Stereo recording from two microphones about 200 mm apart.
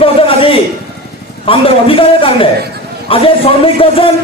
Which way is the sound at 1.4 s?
25° left (ahead or behind).